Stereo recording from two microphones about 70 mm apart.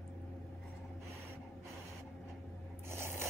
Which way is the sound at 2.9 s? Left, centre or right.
Right.